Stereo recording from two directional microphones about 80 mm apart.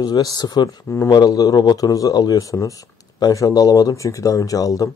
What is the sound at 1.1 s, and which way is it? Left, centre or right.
Speech, left.